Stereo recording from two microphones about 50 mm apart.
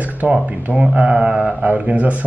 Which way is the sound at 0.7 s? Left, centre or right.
Centre.